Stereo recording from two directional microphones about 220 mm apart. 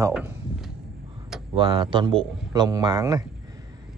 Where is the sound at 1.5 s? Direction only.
20° right (ahead or behind).